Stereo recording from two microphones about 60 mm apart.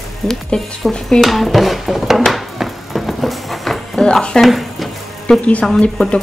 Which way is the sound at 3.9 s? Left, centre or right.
Centre.